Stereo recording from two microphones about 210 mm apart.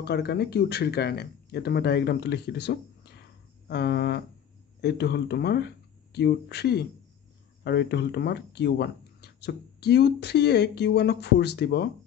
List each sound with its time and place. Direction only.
0.0 s speech: 50° left (ahead or behind)